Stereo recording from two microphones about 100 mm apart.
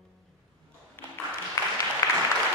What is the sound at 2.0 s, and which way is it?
Applause, 30° left (ahead or behind).